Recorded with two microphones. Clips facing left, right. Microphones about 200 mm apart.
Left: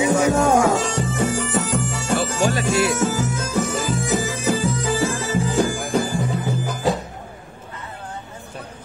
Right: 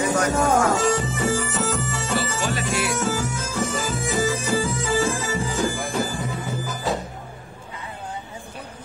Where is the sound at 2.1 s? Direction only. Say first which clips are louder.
Left 6 dB; 50° left (ahead or behind).